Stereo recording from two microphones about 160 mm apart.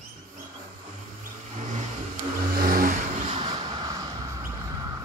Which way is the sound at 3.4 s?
30° right (ahead or behind).